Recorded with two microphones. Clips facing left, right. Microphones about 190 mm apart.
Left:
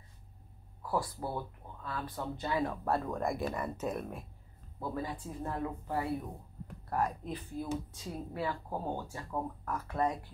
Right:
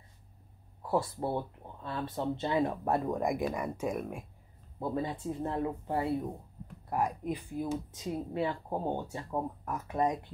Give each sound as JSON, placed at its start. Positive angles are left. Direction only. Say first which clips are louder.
{"t": 0.8, "sound": "speech", "louder": "right 4 dB", "side_deg": -25}
{"t": 4.7, "sound": "speech", "louder": "right 4 dB", "side_deg": -20}